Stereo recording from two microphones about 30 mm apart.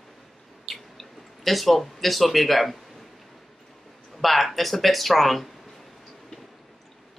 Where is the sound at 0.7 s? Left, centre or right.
Centre.